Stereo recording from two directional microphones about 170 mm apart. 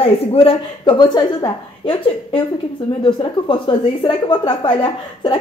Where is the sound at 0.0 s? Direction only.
35° left (ahead or behind).